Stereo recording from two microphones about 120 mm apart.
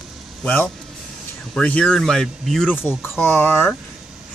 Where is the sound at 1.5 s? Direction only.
10° left (ahead or behind).